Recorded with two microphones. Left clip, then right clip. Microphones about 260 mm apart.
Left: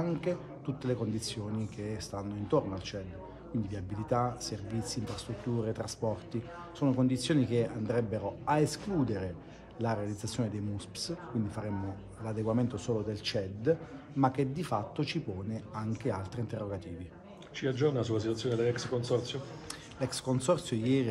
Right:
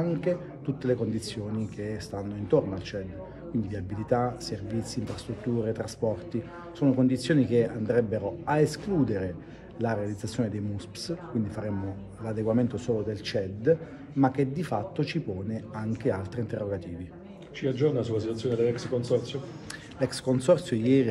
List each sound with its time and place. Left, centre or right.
0.0 s a man's voice: centre
17.6 s a man's voice: left
20.0 s a man's voice: centre